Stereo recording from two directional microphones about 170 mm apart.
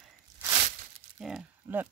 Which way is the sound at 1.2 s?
5° right (ahead or behind).